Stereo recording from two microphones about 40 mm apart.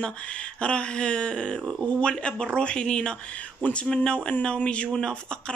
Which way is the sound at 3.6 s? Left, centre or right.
Left.